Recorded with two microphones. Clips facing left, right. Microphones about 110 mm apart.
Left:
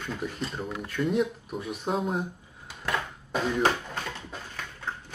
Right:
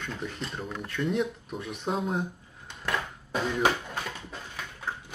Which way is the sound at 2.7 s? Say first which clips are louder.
Left 1 dB; centre (ahead or behind).